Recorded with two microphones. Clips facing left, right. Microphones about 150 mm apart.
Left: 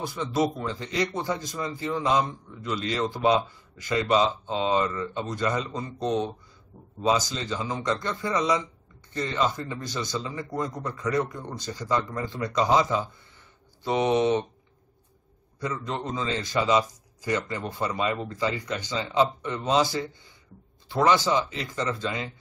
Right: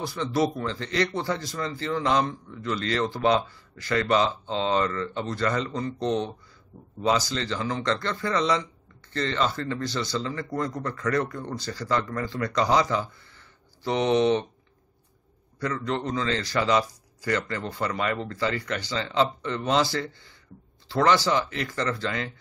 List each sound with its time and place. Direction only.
0.0 s a man's voice: 20° left (ahead or behind)
15.6 s a man's voice: 15° left (ahead or behind)